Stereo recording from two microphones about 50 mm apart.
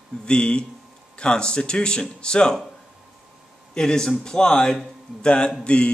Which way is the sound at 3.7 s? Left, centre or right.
Centre.